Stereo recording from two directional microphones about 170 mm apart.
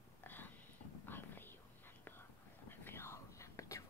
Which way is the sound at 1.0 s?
10° left (ahead or behind).